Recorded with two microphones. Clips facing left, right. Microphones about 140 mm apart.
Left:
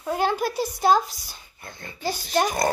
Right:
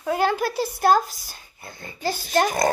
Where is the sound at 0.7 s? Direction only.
55° right (ahead or behind).